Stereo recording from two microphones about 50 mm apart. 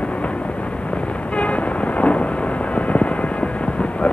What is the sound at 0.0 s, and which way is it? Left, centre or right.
Vehicle, left.